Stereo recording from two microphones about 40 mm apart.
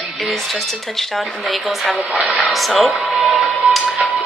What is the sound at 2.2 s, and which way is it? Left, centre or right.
Speech, right.